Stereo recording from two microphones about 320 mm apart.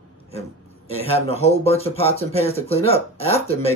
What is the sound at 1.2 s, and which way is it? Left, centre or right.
Speech, centre.